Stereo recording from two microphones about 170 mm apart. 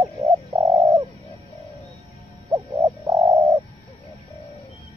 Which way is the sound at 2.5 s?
20° right (ahead or behind).